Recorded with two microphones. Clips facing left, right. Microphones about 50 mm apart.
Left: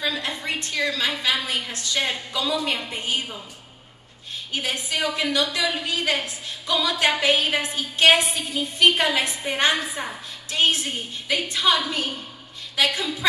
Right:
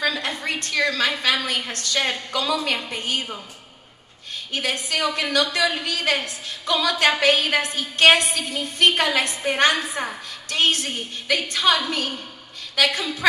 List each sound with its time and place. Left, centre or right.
0.0 s a woman's voice: right
4.5 s a woman's voice: right